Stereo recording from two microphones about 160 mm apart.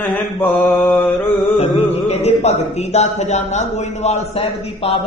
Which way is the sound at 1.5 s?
40° left (ahead or behind).